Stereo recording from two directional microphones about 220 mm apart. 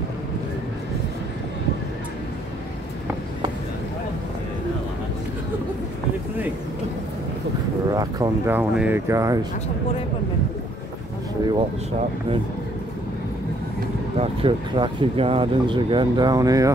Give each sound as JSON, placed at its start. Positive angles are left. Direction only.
{"t": 7.9, "sound": "speech", "side_deg": -15}
{"t": 14.1, "sound": "speech", "side_deg": -25}